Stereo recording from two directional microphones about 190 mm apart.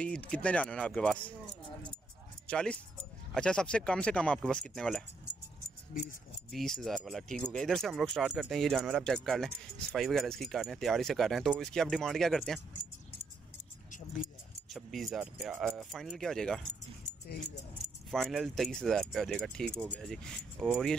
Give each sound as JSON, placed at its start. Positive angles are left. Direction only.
{"t": 0.0, "sound": "speech", "side_deg": 5}
{"t": 2.4, "sound": "speech", "side_deg": 5}
{"t": 5.9, "sound": "speech", "side_deg": 50}
{"t": 6.5, "sound": "speech", "side_deg": 0}
{"t": 14.7, "sound": "speech", "side_deg": 0}
{"t": 18.1, "sound": "speech", "side_deg": 0}